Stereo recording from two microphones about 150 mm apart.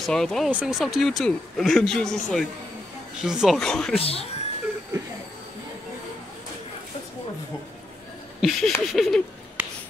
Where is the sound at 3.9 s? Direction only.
40° left (ahead or behind).